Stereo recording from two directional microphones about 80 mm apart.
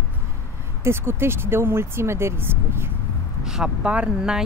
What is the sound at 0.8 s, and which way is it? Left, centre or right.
Speech, right.